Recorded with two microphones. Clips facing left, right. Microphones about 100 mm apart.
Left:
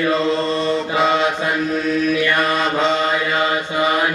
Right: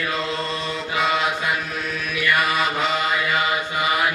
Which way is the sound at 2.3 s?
5° right (ahead or behind).